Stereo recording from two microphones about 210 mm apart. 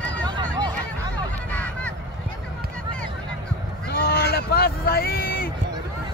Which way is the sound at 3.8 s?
50° left (ahead or behind).